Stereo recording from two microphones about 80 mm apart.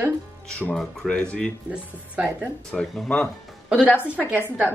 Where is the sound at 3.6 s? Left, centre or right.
Centre.